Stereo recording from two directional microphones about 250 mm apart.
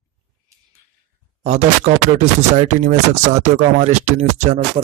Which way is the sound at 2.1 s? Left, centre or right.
Right.